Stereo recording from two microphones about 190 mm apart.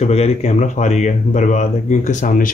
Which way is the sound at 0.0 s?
35° left (ahead or behind).